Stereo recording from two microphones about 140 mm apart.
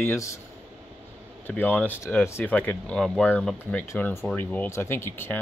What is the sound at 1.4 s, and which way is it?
Speech, 15° left (ahead or behind).